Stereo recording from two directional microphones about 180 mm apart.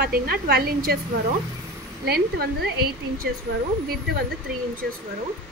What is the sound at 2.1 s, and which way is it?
A woman's voice, 60° right (ahead or behind).